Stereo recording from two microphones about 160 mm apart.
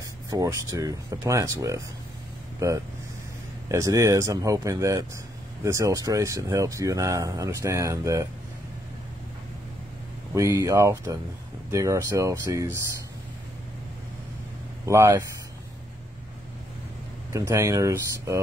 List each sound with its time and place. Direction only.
0.3 s speech: 20° right (ahead or behind)
10.3 s speech: 20° right (ahead or behind)
14.9 s speech: 20° right (ahead or behind)
17.3 s speech: 20° right (ahead or behind)